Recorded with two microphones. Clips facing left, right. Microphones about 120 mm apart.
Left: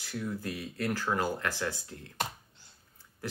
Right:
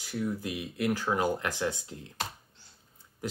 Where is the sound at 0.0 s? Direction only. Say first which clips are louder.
Right 3 dB; 15° right (ahead or behind).